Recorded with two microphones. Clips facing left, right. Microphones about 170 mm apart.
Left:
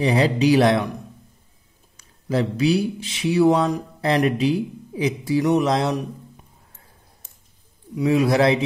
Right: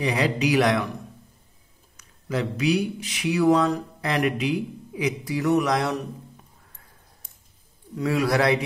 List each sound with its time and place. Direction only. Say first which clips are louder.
0.0 s speech: left 5 dB; 30° left (ahead or behind)
2.0 s speech: left 5 dB; 30° left (ahead or behind)
7.9 s speech: left 4 dB; 15° left (ahead or behind)